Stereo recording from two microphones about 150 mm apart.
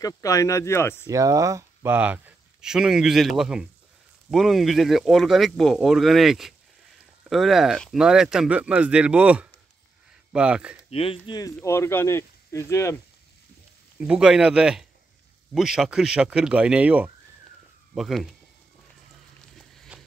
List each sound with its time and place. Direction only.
0.0 s speech: 20° left (ahead or behind)
1.0 s speech: 20° right (ahead or behind); by 10.8 s 5° right (ahead or behind)
10.9 s speech: 40° left (ahead or behind)
11.6 s speech: 15° left (ahead or behind)
13.9 s speech: 5° right (ahead or behind)
19.6 s a sound: 5° left (ahead or behind)